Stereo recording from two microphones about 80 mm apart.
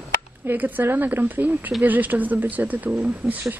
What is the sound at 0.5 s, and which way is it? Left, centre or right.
Speech, right.